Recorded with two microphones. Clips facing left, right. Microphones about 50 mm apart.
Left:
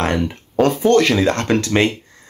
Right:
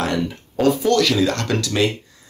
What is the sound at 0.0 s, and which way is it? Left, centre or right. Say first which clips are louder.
Speech: left 2 dB; left.